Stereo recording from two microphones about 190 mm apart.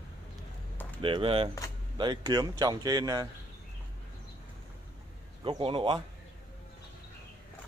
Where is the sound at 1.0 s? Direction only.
30° right (ahead or behind).